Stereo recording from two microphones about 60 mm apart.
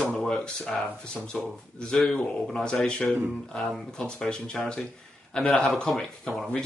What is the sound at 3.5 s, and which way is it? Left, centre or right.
Speech, centre.